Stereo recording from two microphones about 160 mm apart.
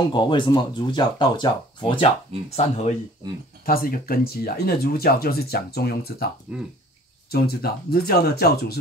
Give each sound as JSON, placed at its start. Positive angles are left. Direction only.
{"t": 0.1, "sound": "speech", "side_deg": 30}
{"t": 3.6, "sound": "speech", "side_deg": 65}